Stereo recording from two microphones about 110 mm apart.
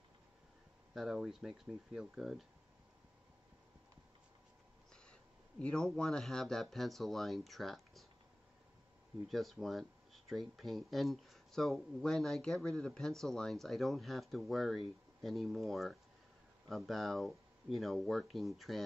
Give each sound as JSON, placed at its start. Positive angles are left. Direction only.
{"t": 0.9, "sound": "speech", "side_deg": -5}
{"t": 5.6, "sound": "speech", "side_deg": 5}
{"t": 9.3, "sound": "speech", "side_deg": 0}